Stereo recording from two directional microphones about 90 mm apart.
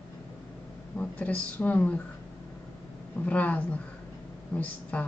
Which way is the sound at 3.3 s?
15° left (ahead or behind).